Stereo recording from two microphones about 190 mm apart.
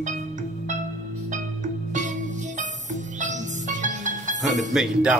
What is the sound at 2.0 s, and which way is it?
Music, 40° right (ahead or behind).